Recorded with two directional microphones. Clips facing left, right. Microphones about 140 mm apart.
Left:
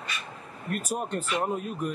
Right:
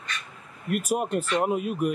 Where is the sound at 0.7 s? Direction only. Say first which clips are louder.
Right 5 dB; 10° right (ahead or behind).